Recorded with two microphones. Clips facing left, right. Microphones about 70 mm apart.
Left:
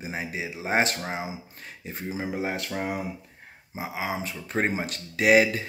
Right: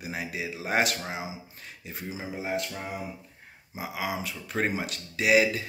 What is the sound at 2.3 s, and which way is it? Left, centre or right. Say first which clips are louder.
Speech: right 1 dB; left.